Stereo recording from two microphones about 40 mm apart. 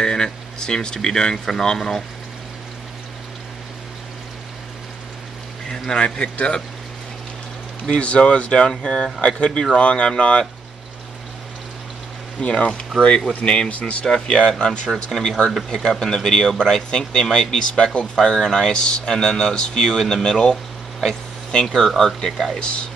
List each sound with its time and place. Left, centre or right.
0.0 s speech: centre
5.7 s speech: left
7.8 s speech: left
12.4 s speech: left
14.0 s speech: left
22.6 s speech: left